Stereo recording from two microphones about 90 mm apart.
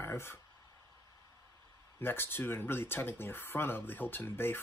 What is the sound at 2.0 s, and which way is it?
Speech, 25° left (ahead or behind).